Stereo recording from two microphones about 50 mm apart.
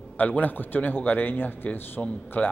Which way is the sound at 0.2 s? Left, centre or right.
Left.